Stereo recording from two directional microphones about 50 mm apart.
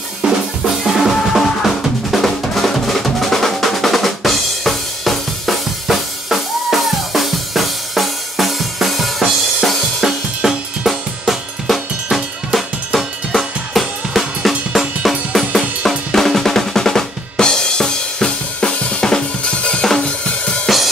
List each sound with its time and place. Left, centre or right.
0.2 s drum: centre
9.7 s drum kit: centre
15.0 s drum: centre; by 19.8 s left
20.0 s drum kit: left
20.6 s drum kit: centre